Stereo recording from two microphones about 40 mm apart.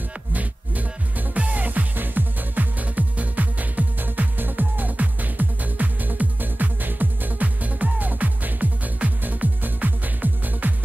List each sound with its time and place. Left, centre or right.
0.3 s music: right